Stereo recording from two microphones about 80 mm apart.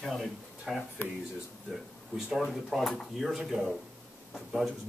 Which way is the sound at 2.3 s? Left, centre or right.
Centre.